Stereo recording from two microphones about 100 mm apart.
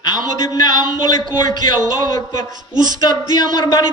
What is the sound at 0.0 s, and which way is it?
Speech, 45° left (ahead or behind).